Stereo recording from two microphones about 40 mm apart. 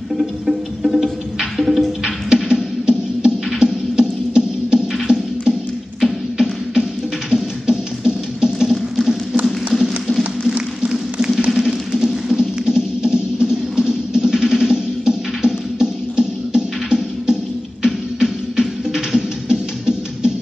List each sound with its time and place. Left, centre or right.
0.2 s music: centre
2.2 s music: centre
11.5 s a sound: centre
12.4 s music: centre